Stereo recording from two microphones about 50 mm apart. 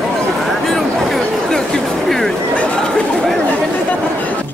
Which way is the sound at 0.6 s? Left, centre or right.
Centre.